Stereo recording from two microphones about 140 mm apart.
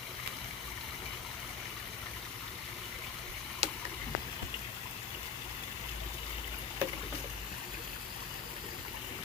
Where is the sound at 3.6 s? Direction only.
50° right (ahead or behind).